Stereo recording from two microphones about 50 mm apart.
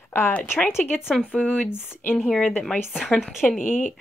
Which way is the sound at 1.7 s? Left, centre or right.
Left.